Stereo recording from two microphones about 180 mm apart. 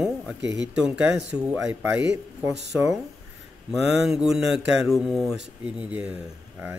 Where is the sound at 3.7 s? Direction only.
Centre (ahead or behind).